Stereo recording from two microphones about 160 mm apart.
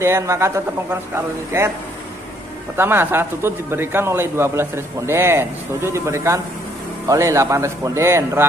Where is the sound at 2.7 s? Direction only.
15° right (ahead or behind).